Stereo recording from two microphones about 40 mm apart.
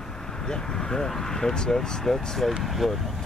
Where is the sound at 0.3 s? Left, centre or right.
Centre.